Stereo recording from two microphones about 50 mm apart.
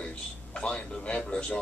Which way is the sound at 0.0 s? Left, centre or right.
Left.